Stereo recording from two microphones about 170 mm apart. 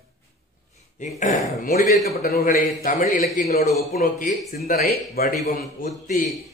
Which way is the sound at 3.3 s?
45° left (ahead or behind).